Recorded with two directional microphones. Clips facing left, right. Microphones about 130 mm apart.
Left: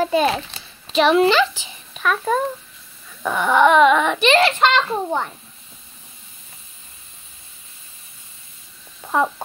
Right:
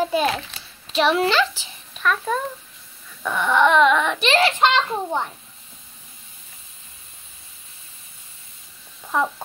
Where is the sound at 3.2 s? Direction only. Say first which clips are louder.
Left 3 dB; 40° left (ahead or behind).